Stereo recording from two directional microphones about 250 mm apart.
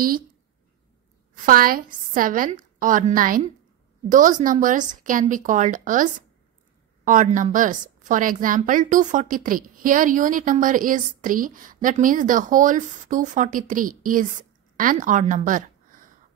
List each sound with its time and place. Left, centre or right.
1.3 s a woman's voice: right